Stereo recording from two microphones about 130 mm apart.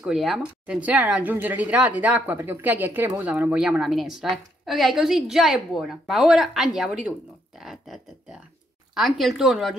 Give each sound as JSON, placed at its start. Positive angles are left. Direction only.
{"t": 0.0, "sound": "speech", "side_deg": 0}